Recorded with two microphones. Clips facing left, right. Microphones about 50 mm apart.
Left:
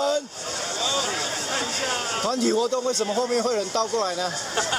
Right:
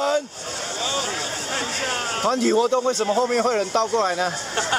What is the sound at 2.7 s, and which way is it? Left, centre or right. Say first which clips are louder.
Speech: right 4 dB; right.